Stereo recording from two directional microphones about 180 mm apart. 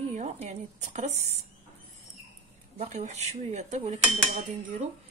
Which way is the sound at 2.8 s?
40° right (ahead or behind).